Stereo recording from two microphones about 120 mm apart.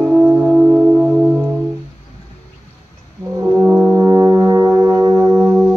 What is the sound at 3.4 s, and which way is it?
Brass instrument, 20° right (ahead or behind).